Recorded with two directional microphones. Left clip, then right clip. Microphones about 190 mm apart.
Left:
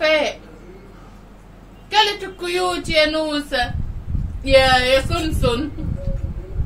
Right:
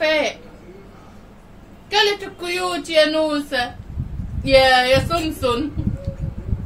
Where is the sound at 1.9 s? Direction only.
15° right (ahead or behind).